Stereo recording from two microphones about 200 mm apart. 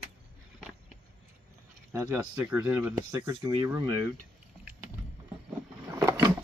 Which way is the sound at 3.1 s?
20° right (ahead or behind).